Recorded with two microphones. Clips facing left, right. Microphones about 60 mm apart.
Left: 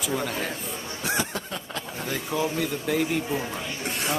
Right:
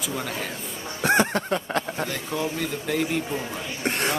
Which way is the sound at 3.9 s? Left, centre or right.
Right.